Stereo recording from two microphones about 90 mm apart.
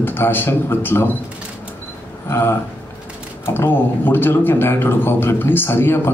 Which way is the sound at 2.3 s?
25° left (ahead or behind).